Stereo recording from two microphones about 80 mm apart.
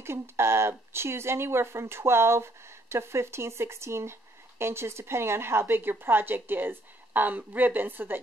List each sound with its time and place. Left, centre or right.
0.0 s speech: right